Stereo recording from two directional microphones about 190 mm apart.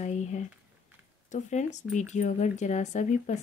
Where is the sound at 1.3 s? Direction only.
40° left (ahead or behind).